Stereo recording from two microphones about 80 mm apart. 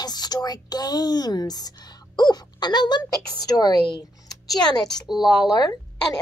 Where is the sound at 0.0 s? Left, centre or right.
Left.